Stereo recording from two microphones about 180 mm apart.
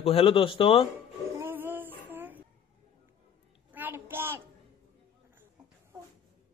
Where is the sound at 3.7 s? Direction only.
10° right (ahead or behind).